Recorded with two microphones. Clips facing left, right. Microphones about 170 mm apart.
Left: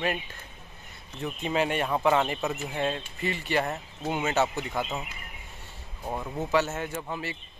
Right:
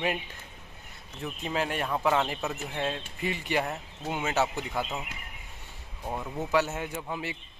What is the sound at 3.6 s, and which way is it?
Speech, 5° left (ahead or behind).